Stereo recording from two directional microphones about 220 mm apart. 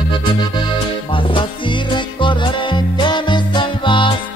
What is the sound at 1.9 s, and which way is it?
Music, 20° left (ahead or behind).